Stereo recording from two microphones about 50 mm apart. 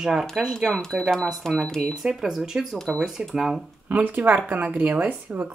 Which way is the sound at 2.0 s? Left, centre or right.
Centre.